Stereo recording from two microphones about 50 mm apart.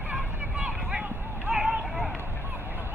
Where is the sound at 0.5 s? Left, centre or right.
Centre.